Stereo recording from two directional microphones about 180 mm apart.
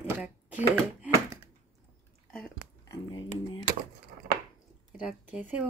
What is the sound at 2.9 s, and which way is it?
Speech, 25° left (ahead or behind).